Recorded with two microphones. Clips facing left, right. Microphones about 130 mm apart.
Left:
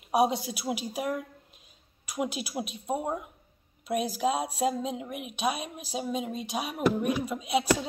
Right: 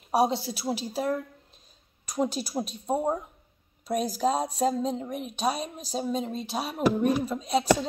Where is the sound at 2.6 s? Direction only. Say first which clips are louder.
Right 6 dB; 35° right (ahead or behind).